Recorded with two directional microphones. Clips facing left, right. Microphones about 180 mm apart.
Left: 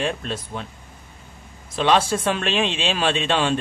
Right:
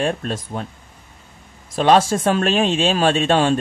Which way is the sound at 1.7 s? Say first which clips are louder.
Right 4 dB; 45° right (ahead or behind).